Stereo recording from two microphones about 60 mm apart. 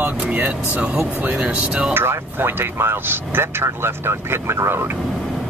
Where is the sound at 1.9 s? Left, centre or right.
Right.